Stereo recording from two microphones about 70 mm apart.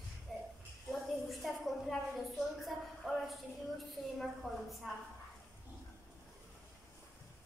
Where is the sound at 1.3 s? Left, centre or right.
Centre.